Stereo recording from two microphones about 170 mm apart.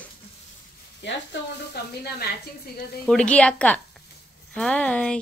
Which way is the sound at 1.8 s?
75° left (ahead or behind).